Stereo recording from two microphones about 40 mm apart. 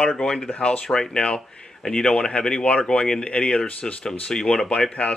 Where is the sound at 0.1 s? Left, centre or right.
Centre.